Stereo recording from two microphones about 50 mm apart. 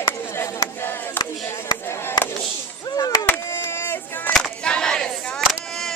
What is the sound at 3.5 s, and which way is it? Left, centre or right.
Chop, left.